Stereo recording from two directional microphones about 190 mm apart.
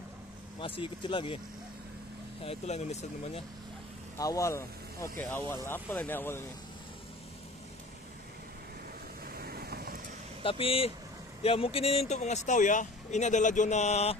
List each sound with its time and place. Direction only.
0.6 s speech: 25° left (ahead or behind)
2.4 s speech: 35° left (ahead or behind)
4.2 s speech: 15° left (ahead or behind)
9.3 s vehicle: 55° right (ahead or behind)
10.4 s speech: 30° left (ahead or behind)